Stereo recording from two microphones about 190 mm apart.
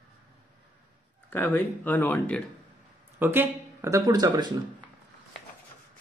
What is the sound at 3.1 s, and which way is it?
Speech, 10° right (ahead or behind).